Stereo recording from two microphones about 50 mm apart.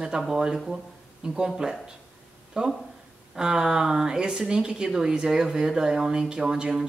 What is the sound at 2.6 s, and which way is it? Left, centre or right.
Speech, centre.